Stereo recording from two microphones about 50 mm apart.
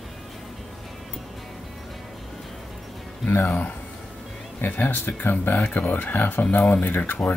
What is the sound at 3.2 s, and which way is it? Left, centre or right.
Speech, left.